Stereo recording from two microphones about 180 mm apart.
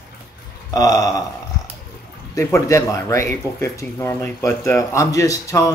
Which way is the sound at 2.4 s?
15° left (ahead or behind).